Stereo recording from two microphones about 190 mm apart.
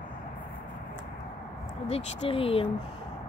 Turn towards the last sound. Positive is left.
turn(degrees=30)  # may be behind; listen again after turning